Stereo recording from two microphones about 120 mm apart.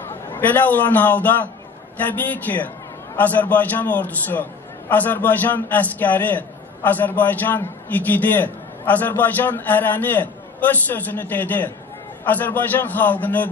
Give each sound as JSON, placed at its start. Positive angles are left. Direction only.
{"t": 0.1, "sound": "a man's voice", "side_deg": 15}